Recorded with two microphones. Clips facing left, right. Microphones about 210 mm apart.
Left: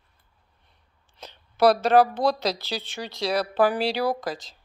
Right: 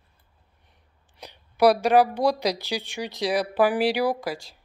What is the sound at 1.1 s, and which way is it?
A woman's voice, 15° right (ahead or behind).